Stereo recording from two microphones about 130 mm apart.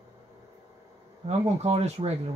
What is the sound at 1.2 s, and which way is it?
Speech, 55° right (ahead or behind).